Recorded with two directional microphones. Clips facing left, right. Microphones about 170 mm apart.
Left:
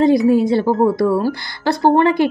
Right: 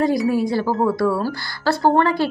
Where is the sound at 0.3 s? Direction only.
25° left (ahead or behind).